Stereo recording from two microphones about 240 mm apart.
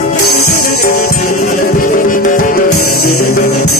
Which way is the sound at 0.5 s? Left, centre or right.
Left.